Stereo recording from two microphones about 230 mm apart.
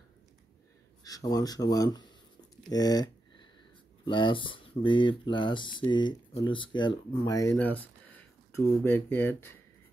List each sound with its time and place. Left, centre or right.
1.0 s speech: centre